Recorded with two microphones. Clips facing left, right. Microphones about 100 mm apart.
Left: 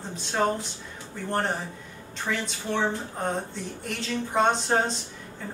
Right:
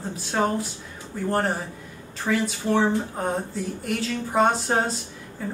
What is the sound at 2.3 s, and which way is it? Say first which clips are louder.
Speech: right 6 dB; 15° right (ahead or behind).